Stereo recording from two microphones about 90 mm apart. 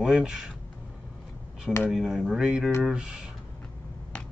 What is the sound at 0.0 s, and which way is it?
Speech, 10° right (ahead or behind).